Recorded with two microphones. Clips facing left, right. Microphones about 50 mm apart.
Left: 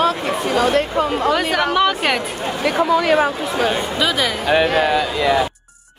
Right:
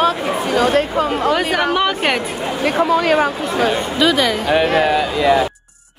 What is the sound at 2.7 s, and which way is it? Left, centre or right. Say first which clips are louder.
Speech: right 1 dB; right.